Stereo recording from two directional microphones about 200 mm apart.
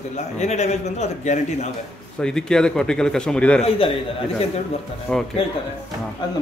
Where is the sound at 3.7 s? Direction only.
25° left (ahead or behind).